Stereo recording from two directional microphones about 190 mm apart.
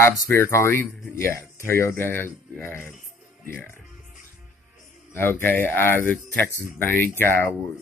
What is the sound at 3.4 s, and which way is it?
Music, 10° left (ahead or behind).